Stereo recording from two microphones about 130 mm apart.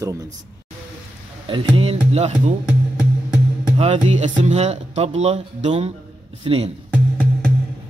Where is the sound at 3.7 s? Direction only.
55° right (ahead or behind).